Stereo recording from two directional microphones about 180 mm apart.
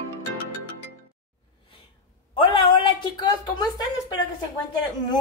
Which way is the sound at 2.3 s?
30° left (ahead or behind).